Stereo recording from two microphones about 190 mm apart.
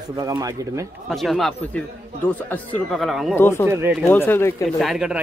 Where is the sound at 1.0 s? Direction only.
Centre (ahead or behind).